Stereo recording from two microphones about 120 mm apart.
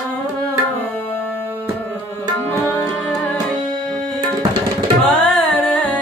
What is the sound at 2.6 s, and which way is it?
Music, 20° left (ahead or behind).